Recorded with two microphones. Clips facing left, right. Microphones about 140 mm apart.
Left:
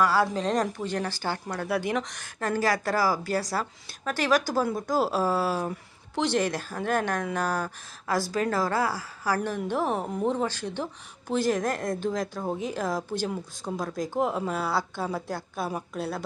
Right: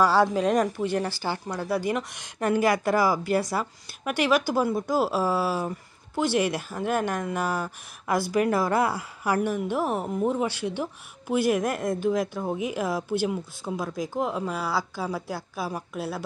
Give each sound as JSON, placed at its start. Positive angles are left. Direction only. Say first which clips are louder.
{"t": 0.3, "sound": "a woman's voice", "louder": "right 3 dB", "side_deg": -10}
{"t": 2.1, "sound": "a woman's voice", "louder": "right 4 dB", "side_deg": -20}